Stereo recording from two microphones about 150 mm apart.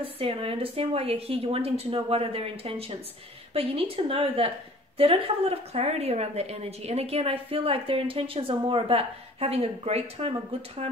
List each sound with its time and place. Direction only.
0.0 s a woman's voice: 40° right (ahead or behind)